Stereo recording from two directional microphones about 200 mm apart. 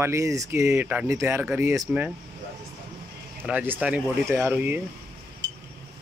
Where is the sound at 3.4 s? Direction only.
10° right (ahead or behind).